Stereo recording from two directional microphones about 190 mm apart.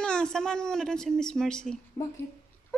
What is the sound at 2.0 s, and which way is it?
Speech, 15° left (ahead or behind).